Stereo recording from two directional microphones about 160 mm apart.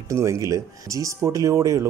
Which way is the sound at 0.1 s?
20° right (ahead or behind).